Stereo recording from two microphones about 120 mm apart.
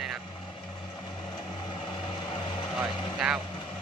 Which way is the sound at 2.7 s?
5° right (ahead or behind).